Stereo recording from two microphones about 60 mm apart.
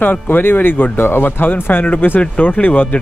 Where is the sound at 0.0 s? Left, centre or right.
Left.